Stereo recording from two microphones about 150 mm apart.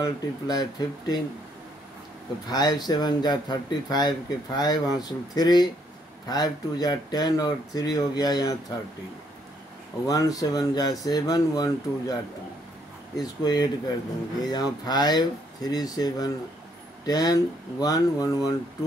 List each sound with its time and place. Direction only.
0.0 s speech: 25° left (ahead or behind)
2.5 s speech: 25° left (ahead or behind)
10.0 s speech: 25° left (ahead or behind)
13.2 s speech: 25° left (ahead or behind)